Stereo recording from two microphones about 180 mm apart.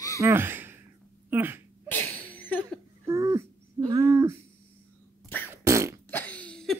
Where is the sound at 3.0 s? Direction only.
20° right (ahead or behind).